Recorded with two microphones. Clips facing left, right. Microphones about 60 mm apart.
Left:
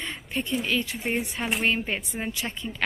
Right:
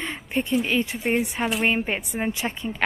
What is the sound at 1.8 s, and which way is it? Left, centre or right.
A woman's voice, centre.